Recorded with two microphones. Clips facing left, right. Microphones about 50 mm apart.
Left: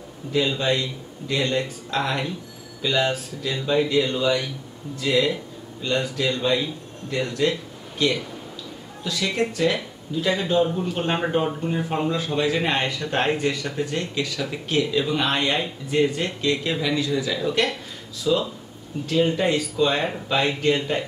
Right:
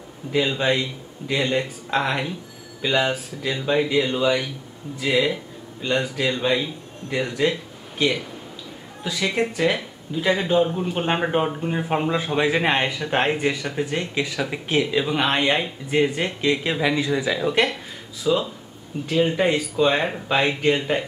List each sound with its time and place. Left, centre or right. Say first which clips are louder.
0.3 s speech: right 1 dB; centre